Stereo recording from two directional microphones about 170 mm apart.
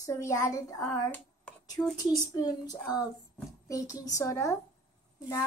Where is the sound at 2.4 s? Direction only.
20° left (ahead or behind).